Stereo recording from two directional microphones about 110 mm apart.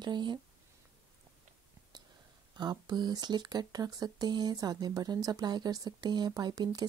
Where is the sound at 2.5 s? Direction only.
40° right (ahead or behind).